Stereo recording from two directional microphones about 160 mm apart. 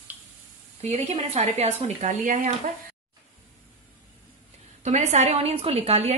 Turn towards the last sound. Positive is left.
turn(degrees=-40)  # may be behind; listen again after turning